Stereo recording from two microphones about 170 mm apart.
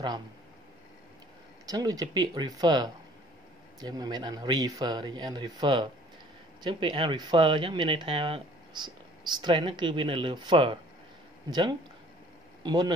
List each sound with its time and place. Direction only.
1.7 s speech: 20° right (ahead or behind)
12.6 s speech: 25° right (ahead or behind)